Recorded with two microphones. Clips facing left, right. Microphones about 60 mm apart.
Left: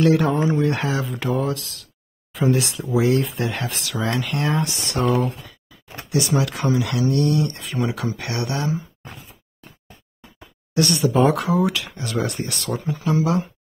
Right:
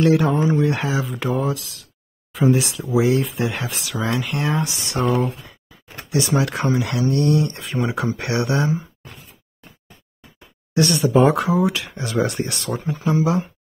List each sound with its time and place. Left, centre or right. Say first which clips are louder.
0.1 s speech: right 1 dB; centre
6.0 s speech: right 1 dB; right
10.7 s speech: right 2 dB; right